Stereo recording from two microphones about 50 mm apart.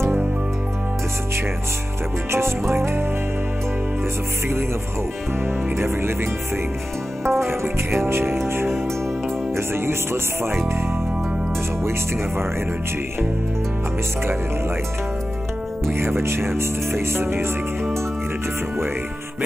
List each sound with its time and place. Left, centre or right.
2.7 s speech: right
5.8 s speech: right
7.2 s speech: right
15.9 s speech: right